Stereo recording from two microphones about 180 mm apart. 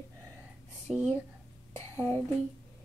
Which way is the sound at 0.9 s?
Centre (ahead or behind).